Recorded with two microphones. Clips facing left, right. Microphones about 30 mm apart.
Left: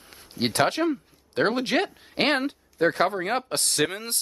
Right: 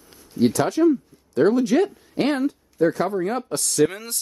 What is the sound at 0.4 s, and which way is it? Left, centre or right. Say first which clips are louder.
Speech: right 5 dB; left.